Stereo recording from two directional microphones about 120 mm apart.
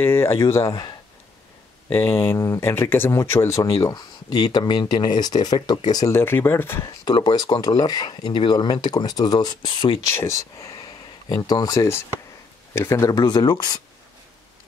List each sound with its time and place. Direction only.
0.0 s speech: 20° left (ahead or behind)
2.0 s speech: 20° left (ahead or behind)
6.1 s speech: 20° left (ahead or behind)
7.1 s speech: 35° left (ahead or behind)
10.0 s speech: 25° left (ahead or behind)